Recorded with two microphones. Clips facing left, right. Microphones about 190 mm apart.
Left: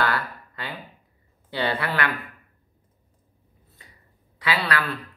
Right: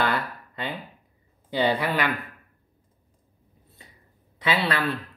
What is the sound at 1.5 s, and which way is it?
Speech, 15° right (ahead or behind).